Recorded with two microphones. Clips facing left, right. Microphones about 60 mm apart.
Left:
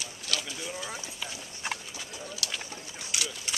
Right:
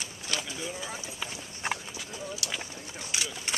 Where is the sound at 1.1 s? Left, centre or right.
Centre.